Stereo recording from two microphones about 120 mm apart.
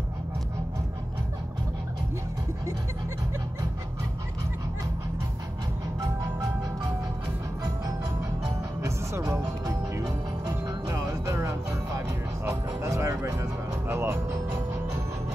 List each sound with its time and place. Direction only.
8.8 s music: 25° right (ahead or behind)